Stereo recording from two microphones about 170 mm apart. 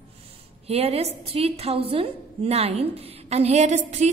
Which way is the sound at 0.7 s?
35° right (ahead or behind).